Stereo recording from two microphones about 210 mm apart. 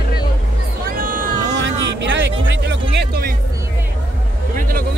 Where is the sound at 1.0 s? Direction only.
40° right (ahead or behind).